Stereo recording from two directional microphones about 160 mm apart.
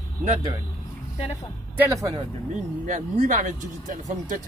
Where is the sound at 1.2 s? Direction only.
40° left (ahead or behind).